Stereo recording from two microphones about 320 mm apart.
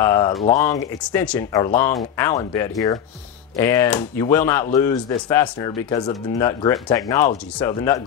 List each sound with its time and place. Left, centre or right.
0.0 s speech: centre
0.3 s speech: centre
0.6 s speech: centre